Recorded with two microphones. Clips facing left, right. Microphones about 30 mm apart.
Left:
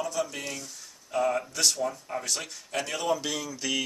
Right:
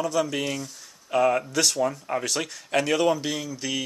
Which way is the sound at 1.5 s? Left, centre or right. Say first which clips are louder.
Right 3 dB; right.